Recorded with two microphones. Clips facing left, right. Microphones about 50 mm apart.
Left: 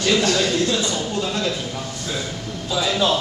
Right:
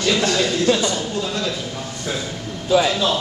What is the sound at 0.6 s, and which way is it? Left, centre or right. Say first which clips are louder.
Speech: right 4 dB; right.